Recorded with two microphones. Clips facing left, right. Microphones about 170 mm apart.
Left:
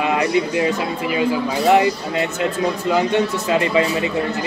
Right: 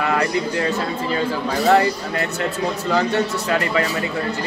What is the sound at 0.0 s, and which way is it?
Speech, 20° left (ahead or behind).